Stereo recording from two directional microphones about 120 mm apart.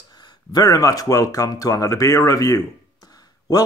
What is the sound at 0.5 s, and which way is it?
Speech, 30° left (ahead or behind).